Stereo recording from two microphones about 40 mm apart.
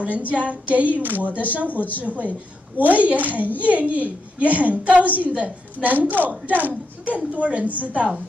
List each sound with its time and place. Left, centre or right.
0.0 s a woman's voice: right
6.0 s speech: right
7.3 s a woman's voice: right